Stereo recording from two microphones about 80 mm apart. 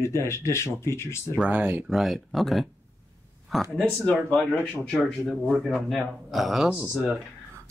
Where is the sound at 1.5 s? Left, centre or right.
Right.